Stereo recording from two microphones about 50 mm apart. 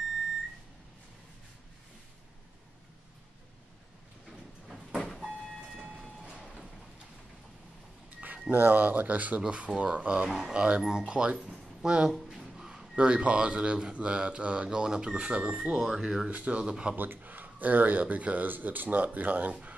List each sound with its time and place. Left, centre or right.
6.3 s rain: right
8.5 s speech: right
9.4 s speech: right
10.2 s speech: centre
10.5 s speech: right
12.1 s a sound: centre
12.9 s speech: right
16.3 s speech: right
16.5 s speech: centre
16.9 s speech: right